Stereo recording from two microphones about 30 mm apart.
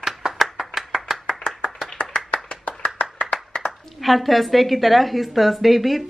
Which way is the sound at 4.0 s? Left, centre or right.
Centre.